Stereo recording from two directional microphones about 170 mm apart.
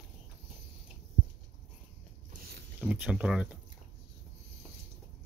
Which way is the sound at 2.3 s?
65° right (ahead or behind).